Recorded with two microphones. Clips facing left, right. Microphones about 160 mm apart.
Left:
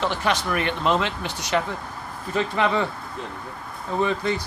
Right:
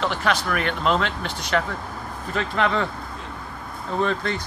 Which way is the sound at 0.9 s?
15° left (ahead or behind).